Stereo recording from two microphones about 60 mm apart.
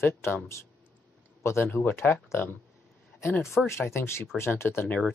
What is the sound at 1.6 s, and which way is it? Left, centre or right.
Speech, left.